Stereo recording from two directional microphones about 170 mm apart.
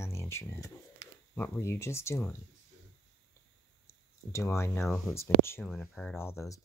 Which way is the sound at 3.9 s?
15° left (ahead or behind).